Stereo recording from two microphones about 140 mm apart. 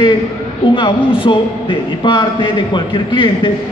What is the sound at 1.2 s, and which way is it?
A man's voice, 35° left (ahead or behind).